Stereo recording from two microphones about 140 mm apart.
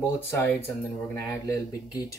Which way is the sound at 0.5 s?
15° left (ahead or behind).